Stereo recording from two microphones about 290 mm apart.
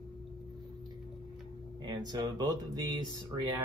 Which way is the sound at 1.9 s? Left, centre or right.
Centre.